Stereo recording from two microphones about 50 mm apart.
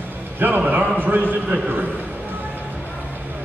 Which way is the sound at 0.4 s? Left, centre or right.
Right.